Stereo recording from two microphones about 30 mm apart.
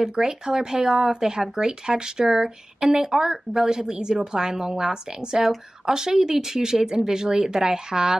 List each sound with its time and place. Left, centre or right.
0.0 s a woman's voice: right